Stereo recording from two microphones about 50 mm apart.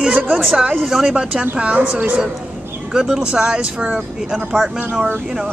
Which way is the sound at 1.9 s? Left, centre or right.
Right.